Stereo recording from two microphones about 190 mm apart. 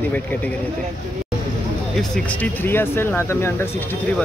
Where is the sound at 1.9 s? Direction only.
5° left (ahead or behind).